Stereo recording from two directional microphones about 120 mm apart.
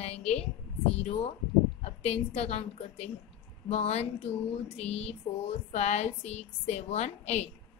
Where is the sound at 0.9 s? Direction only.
65° left (ahead or behind).